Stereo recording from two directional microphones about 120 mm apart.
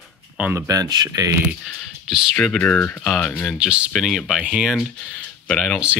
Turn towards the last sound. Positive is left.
turn(degrees=0)  # may be behind; listen again after turning